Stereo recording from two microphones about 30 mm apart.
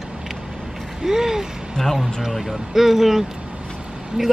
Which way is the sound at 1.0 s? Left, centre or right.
Centre.